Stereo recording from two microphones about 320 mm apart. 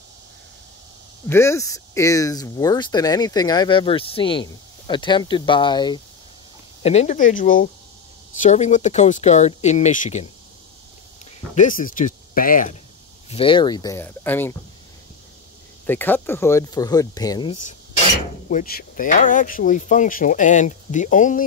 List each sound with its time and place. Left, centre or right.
1.3 s speech: centre
11.5 s speech: left; by 14.6 s centre
15.9 s speech: centre
18.5 s speech: left